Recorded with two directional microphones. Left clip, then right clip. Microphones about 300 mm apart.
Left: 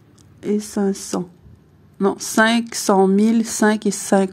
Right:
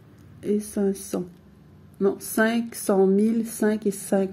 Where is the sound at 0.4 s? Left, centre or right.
Centre.